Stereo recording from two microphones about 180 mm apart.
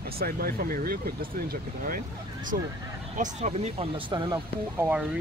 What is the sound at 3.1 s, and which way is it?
Speech, 40° right (ahead or behind).